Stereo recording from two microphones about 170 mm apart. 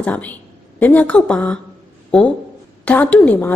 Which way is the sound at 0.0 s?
10° left (ahead or behind).